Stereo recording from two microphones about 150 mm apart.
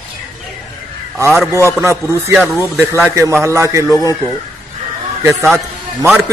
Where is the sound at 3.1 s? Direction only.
20° right (ahead or behind).